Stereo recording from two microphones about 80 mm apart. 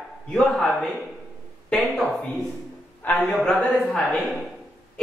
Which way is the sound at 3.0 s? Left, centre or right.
Left.